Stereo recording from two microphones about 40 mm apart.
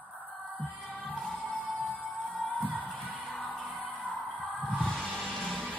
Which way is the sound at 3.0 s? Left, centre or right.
Right.